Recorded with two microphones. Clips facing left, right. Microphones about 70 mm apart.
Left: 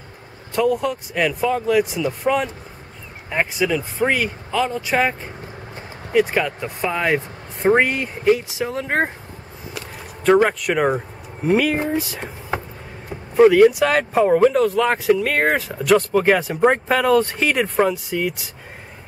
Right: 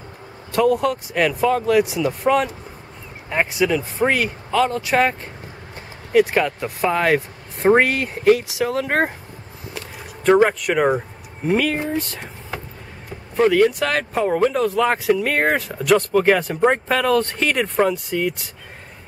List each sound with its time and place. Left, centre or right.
0.6 s speech: centre
10.2 s speech: centre
12.5 s vehicle: left
13.1 s speech: centre